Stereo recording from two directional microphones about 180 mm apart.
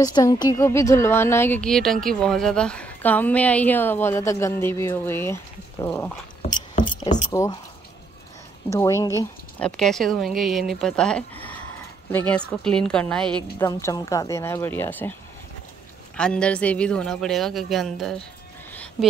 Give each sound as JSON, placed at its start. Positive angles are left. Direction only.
{"t": 0.0, "sound": "speech", "side_deg": 20}
{"t": 8.6, "sound": "a woman's voice", "side_deg": 15}
{"t": 9.6, "sound": "speech", "side_deg": 5}
{"t": 13.7, "sound": "speech", "side_deg": 15}
{"t": 16.2, "sound": "speech", "side_deg": 5}
{"t": 18.7, "sound": "a sound", "side_deg": 5}